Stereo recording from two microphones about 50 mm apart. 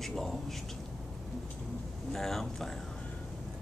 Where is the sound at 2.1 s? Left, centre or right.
Centre.